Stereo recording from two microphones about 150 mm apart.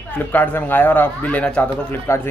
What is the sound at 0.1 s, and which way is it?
Speech, 10° left (ahead or behind).